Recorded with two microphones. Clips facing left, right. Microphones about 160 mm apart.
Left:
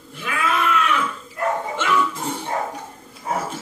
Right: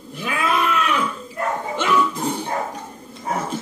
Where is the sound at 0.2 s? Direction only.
15° right (ahead or behind).